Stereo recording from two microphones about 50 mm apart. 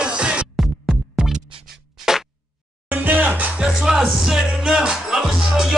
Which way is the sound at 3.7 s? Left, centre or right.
Centre.